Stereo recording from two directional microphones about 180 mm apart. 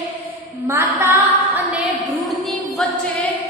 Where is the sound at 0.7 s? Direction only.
15° right (ahead or behind).